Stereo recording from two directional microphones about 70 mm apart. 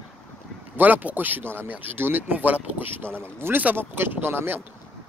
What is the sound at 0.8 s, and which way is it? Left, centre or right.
Speech, right.